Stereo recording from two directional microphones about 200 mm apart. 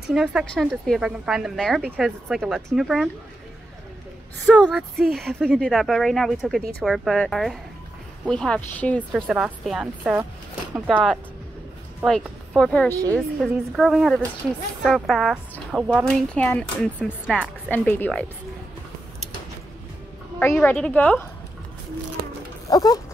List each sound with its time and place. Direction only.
0.1 s speech: 5° right (ahead or behind)
4.5 s a woman's voice: 5° left (ahead or behind)
20.6 s a woman's voice: 5° left (ahead or behind)
22.7 s a sound: 20° left (ahead or behind)